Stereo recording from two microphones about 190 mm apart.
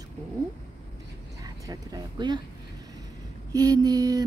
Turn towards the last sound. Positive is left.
turn(degrees=-20)  # may be behind; listen again after turning